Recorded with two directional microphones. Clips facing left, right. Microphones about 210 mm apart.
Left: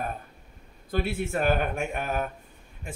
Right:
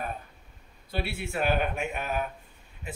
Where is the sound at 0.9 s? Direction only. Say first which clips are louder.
Left 4 dB; 45° left (ahead or behind).